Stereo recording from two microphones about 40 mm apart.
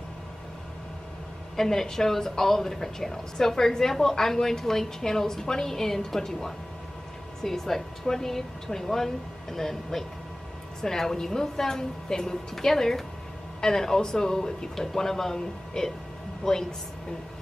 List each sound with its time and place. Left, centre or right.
1.6 s a woman's voice: centre